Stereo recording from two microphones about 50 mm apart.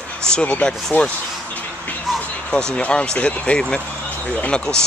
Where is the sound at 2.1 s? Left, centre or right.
Centre.